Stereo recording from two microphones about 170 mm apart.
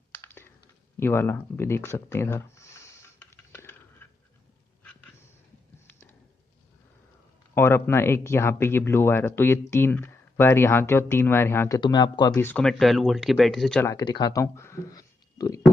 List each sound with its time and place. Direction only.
0.1 s computer keyboard: 15° left (ahead or behind)
0.9 s a sound: 15° left (ahead or behind)
5.9 s a sound: 10° left (ahead or behind)
7.5 s speech: 15° left (ahead or behind)
11.8 s speech: 25° left (ahead or behind)
12.4 s speech: 5° left (ahead or behind)
13.8 s speech: 25° left (ahead or behind)